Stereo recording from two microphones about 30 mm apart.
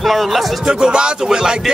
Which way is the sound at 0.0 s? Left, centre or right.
Centre.